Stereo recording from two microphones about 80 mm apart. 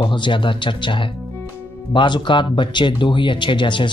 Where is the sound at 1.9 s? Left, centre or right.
Left.